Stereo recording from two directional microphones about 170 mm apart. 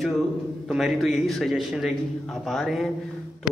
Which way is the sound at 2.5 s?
Centre (ahead or behind).